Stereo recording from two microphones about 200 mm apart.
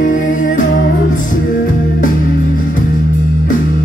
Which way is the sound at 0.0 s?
40° left (ahead or behind).